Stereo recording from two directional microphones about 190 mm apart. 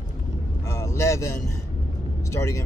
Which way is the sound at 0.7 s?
15° left (ahead or behind).